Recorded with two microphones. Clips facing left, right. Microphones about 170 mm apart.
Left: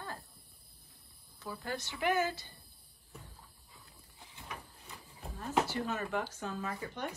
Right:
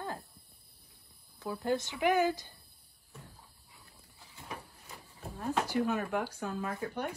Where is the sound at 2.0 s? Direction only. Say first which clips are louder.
Right 3 dB; 15° right (ahead or behind).